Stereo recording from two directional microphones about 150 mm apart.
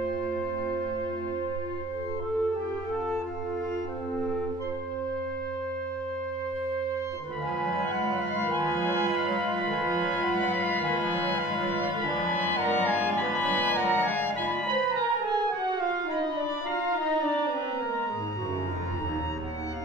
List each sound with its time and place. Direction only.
10.4 s music: 10° left (ahead or behind)
15.3 s music: 30° right (ahead or behind)